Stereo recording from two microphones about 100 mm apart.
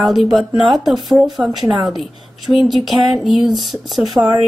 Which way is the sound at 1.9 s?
Centre (ahead or behind).